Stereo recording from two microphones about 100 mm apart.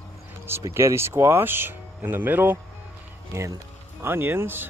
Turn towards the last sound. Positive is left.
turn(degrees=-20)  # may be behind; listen again after turning